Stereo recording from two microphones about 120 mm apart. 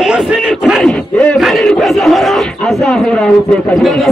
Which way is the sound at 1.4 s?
Centre (ahead or behind).